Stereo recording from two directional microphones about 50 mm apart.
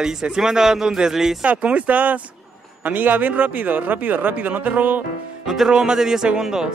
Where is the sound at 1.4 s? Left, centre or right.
Right.